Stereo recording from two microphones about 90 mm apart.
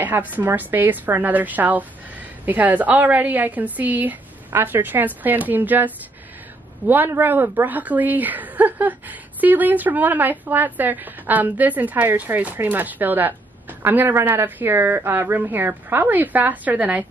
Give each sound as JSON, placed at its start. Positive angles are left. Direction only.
{"t": 0.0, "sound": "a woman's voice", "side_deg": -20}